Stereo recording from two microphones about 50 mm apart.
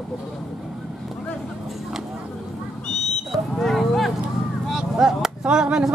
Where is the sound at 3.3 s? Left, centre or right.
Centre.